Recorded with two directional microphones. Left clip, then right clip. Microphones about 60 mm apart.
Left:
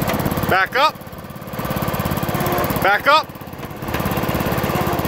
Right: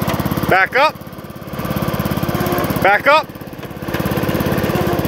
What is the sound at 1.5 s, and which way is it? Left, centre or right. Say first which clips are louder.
Lawn mower: right 1 dB; centre.